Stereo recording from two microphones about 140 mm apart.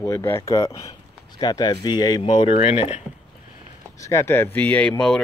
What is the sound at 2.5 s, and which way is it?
Speech, 45° left (ahead or behind).